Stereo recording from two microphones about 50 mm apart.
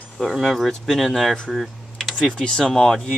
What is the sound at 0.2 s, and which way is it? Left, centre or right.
Speech, centre.